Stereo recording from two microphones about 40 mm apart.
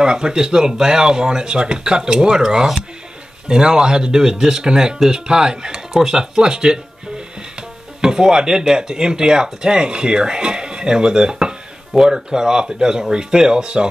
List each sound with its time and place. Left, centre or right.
0.0 s speech: centre
8.0 s speech: centre